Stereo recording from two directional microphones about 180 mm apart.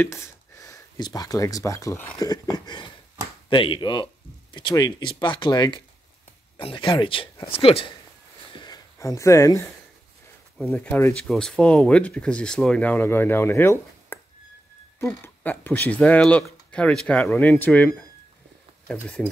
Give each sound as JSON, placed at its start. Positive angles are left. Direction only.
{"t": 0.0, "sound": "speech", "side_deg": 15}
{"t": 8.5, "sound": "a sound", "side_deg": 25}
{"t": 10.6, "sound": "speech", "side_deg": 10}